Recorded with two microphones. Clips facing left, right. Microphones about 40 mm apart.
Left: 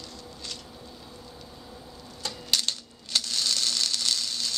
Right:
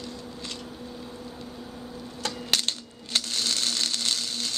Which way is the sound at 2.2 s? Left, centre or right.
Right.